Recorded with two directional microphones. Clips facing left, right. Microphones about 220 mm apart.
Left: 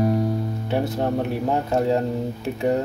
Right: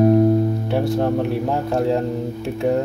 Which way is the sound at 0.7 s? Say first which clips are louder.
Even; centre (ahead or behind).